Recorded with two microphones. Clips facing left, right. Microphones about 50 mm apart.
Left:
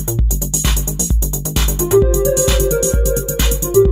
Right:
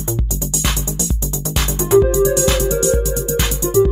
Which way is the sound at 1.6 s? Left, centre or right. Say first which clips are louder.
Even; right.